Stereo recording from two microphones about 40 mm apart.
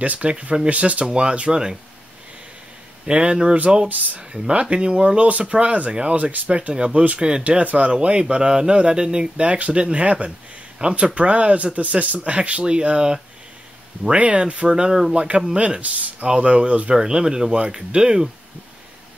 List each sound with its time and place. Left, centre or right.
0.0 s speech: right; by 1.8 s centre
3.1 s speech: right
16.9 s speech: centre